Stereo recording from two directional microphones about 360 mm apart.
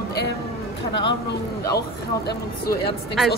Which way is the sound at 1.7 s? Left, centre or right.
Left.